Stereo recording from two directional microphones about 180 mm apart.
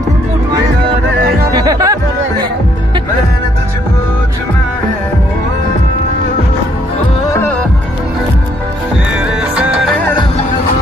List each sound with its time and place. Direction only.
1.2 s music: 55° right (ahead or behind)
1.5 s music: 20° right (ahead or behind)
9.6 s music: 5° right (ahead or behind)